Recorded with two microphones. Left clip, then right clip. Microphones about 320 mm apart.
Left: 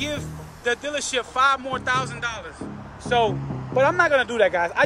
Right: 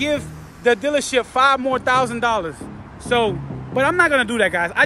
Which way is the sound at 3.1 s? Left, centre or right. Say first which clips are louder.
Right 2 dB; centre.